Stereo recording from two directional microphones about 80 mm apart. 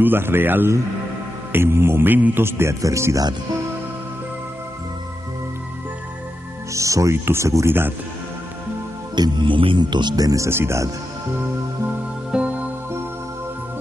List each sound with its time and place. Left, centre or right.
0.0 s a man's voice: right
6.7 s speech: right
9.1 s speech: right
12.3 s music: centre